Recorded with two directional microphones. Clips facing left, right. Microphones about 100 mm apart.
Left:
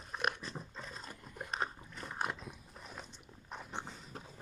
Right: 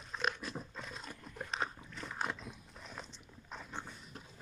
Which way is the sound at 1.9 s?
15° left (ahead or behind).